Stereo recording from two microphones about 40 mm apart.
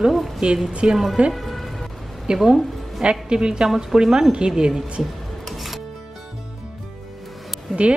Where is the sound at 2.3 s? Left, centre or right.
Right.